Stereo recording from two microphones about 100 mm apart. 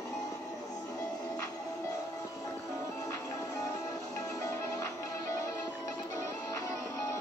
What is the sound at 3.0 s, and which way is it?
Music, 30° left (ahead or behind).